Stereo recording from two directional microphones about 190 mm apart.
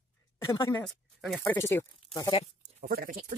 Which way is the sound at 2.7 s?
45° right (ahead or behind).